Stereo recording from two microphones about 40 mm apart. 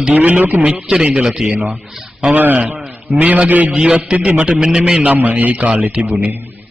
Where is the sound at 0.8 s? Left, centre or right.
Right.